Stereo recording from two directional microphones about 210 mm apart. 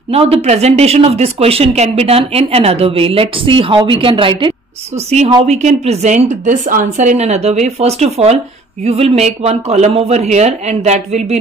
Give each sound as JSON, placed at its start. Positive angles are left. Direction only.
{"t": 0.1, "sound": "speech", "side_deg": -30}